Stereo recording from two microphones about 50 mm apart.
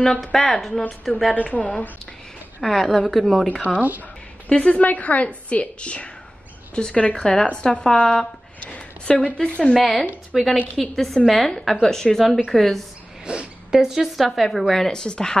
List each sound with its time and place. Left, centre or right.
0.0 s a woman's voice: centre
1.3 s a woman's voice: left
2.6 s speech: centre
3.6 s speech: right
4.5 s a woman's voice: left
8.5 s a sound: left
9.0 s a woman's voice: centre
10.3 s speech: centre
13.2 s a sound: centre
13.7 s speech: centre